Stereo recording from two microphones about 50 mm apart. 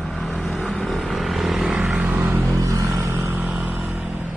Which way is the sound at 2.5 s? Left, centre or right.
Right.